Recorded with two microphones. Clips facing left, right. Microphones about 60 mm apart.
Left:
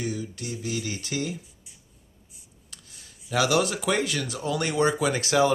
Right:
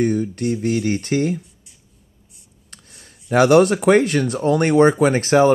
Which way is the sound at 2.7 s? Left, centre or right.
Right.